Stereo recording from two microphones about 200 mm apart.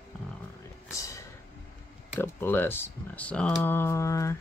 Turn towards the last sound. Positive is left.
turn(degrees=15)  # may be behind; listen again after turning